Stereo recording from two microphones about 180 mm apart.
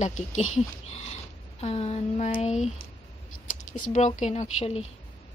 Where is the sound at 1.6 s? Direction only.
35° left (ahead or behind).